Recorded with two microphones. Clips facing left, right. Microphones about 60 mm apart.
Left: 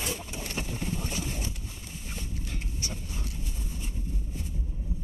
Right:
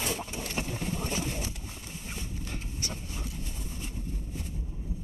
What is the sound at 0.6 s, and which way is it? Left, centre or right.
Boat, right.